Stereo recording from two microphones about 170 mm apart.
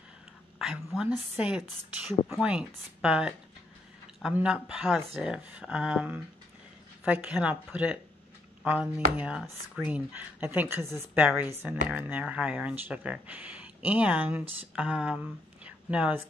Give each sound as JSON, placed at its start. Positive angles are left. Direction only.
{"t": 0.9, "sound": "a woman's voice", "side_deg": -5}